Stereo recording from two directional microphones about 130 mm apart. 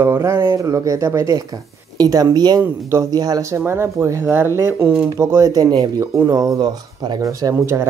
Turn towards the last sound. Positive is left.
turn(degrees=-20)  # may be behind; listen again after turning